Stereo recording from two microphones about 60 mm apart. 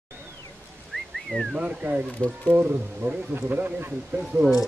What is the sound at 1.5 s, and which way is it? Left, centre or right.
Speech, right.